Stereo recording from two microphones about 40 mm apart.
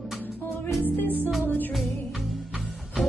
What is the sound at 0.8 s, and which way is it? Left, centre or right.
Music, left.